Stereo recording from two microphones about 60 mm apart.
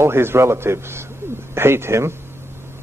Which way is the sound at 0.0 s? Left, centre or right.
Right.